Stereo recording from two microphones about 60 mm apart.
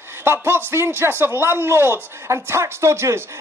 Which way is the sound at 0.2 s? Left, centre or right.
Right.